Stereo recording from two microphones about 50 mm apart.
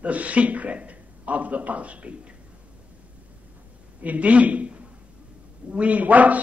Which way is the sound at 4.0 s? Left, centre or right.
Right.